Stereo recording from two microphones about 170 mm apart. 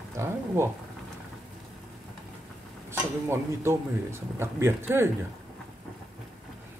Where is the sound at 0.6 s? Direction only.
15° right (ahead or behind).